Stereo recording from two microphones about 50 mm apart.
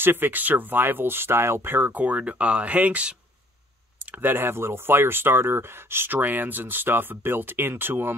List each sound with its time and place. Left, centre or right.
0.0 s speech: right
2.0 s speech: right
4.6 s speech: right